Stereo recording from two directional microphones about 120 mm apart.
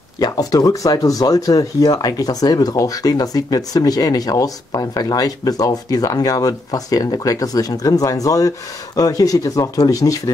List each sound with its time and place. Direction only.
0.2 s speech: 30° left (ahead or behind)